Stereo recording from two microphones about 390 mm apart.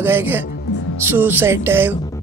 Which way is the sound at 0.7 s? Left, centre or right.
Left.